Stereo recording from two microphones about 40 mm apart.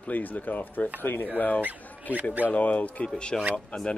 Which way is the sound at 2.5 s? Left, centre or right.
Left.